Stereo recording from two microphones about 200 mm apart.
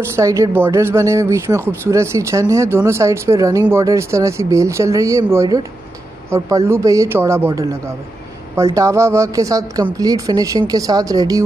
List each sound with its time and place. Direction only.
0.1 s speech: 15° right (ahead or behind)